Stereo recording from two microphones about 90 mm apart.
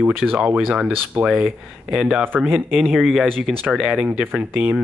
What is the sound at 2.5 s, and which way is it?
Speech, 20° right (ahead or behind).